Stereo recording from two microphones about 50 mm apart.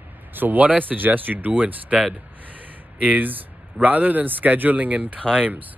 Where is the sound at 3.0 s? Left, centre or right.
Right.